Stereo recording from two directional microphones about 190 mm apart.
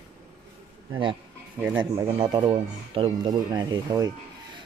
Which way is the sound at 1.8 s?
20° right (ahead or behind).